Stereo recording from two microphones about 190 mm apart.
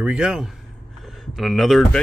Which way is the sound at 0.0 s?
5° right (ahead or behind).